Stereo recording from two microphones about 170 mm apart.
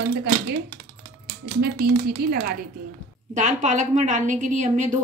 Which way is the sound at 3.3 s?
45° right (ahead or behind).